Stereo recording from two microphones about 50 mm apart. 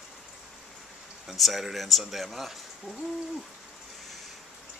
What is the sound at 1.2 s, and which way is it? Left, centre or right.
Speech, centre.